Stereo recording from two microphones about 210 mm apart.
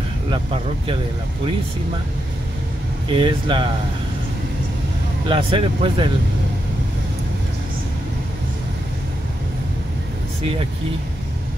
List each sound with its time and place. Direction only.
0.3 s speech: 25° right (ahead or behind)
3.1 s speech: 25° right (ahead or behind)
5.3 s speech: 25° right (ahead or behind)